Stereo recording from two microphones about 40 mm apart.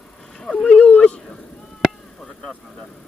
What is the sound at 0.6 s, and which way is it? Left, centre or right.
Dog, left.